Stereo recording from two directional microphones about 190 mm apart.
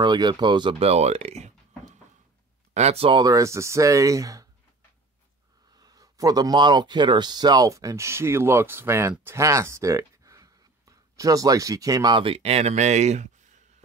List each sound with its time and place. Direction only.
0.0 s speech: 25° right (ahead or behind)
2.7 s speech: 35° right (ahead or behind); by 4.5 s 15° right (ahead or behind)
5.8 s speech: 20° right (ahead or behind); by 13.3 s 35° right (ahead or behind)